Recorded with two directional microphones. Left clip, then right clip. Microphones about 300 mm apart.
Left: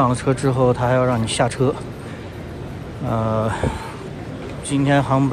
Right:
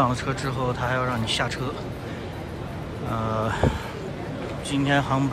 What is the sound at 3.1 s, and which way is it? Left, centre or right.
Speech, centre.